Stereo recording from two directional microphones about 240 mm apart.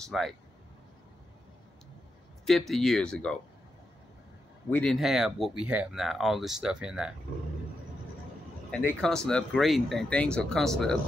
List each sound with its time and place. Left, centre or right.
0.0 s speech: centre
2.4 s speech: centre
4.6 s speech: centre
8.7 s speech: centre